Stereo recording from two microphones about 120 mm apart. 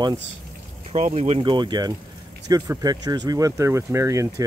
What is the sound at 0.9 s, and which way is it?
Speech, 65° right (ahead or behind).